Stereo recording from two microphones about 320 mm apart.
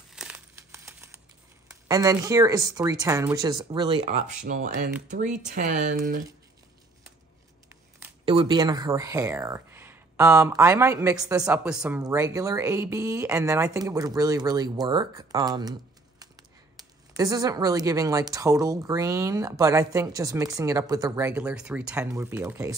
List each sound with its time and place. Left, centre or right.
0.1 s crumpling: centre
1.9 s speech: centre
8.3 s speech: centre
16.7 s speech: centre